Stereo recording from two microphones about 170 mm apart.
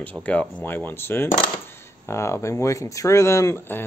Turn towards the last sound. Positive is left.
turn(degrees=15)  # may be behind; listen again after turning